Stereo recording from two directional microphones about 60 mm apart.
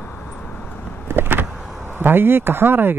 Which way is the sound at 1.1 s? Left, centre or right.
Right.